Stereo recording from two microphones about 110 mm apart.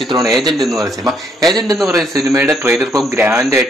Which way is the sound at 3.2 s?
25° right (ahead or behind).